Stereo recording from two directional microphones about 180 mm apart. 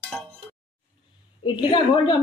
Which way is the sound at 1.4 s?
25° left (ahead or behind).